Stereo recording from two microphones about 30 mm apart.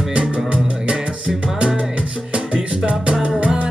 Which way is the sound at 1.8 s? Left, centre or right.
Right.